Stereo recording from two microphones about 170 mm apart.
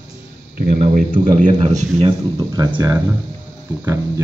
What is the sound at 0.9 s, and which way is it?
A man's voice, 50° right (ahead or behind).